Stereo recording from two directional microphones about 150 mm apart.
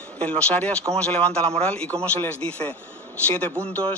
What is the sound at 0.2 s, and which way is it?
Speech, 5° left (ahead or behind).